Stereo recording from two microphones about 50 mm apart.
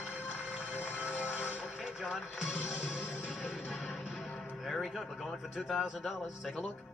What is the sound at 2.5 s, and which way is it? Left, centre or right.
Music, left.